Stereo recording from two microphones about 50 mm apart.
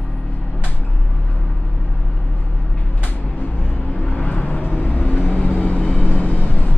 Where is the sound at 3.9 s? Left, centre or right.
Left.